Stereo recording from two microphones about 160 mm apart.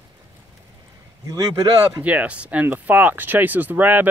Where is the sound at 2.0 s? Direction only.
10° right (ahead or behind).